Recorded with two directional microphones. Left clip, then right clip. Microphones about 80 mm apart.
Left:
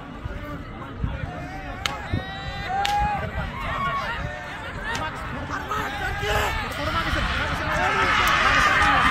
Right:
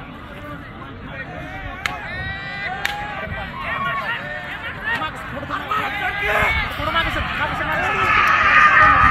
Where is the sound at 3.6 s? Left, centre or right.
Centre.